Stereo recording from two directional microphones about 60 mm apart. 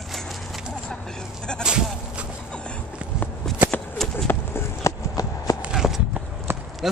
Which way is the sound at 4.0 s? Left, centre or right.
Centre.